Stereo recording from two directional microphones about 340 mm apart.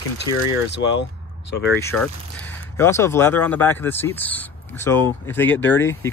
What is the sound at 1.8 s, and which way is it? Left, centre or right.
Speech, centre.